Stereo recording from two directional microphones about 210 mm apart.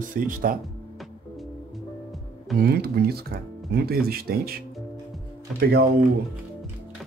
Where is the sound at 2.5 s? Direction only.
50° right (ahead or behind).